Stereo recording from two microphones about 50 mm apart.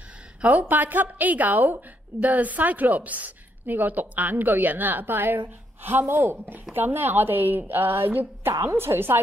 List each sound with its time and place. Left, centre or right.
0.4 s a woman's voice: right